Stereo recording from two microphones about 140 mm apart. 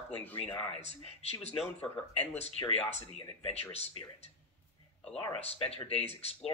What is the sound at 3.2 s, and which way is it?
Speech, 35° left (ahead or behind).